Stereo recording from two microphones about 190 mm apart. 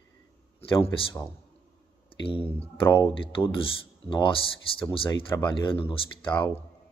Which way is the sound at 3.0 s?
25° left (ahead or behind).